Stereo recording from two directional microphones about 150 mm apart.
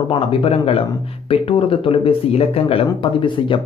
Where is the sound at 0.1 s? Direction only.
40° left (ahead or behind).